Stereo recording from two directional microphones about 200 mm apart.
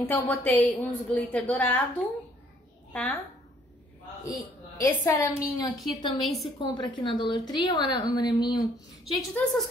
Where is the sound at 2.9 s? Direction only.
5° left (ahead or behind).